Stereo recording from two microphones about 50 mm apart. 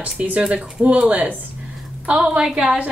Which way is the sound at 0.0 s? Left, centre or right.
Right.